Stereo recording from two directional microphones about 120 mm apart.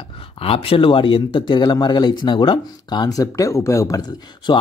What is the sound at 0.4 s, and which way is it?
Speech, 50° left (ahead or behind).